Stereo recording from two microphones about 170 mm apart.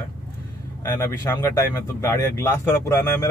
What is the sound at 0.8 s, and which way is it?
Speech, 15° left (ahead or behind).